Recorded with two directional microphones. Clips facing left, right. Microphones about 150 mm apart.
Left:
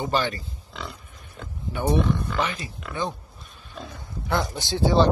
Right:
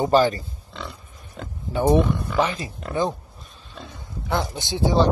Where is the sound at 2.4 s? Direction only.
35° right (ahead or behind).